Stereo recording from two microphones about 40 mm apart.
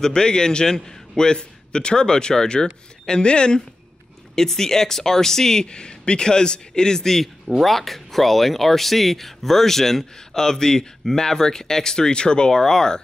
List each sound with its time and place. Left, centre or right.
0.0 s a man's voice: centre
4.4 s speech: centre
7.4 s speech: centre